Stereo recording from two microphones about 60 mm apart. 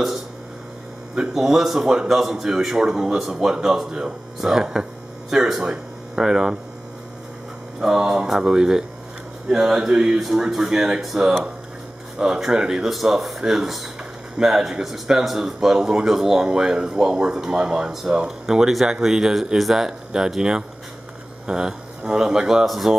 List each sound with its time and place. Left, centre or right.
1.1 s speech: centre
8.1 s speech: centre